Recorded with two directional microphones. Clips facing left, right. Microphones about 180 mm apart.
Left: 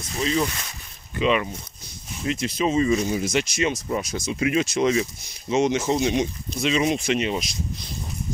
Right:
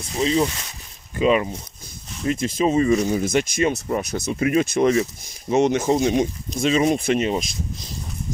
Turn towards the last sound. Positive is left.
turn(degrees=-45)  # may be behind; listen again after turning